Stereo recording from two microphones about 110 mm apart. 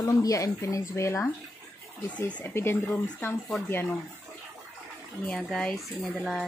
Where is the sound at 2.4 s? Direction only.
20° left (ahead or behind).